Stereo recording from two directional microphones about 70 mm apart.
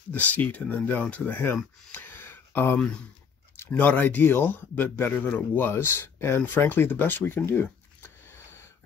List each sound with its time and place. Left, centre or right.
0.1 s a man's voice: left